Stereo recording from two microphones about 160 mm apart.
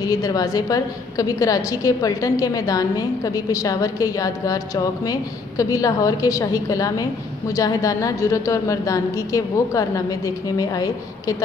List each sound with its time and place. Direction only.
0.0 s a woman's voice: 25° left (ahead or behind)